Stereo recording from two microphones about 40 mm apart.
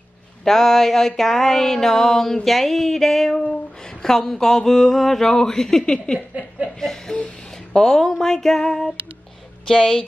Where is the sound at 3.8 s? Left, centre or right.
Centre.